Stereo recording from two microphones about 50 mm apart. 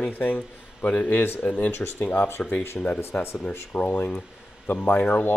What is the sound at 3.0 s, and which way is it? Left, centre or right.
Speech, left.